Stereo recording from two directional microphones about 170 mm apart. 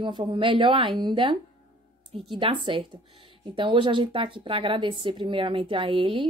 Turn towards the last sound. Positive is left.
turn(degrees=-30)  # may be behind; listen again after turning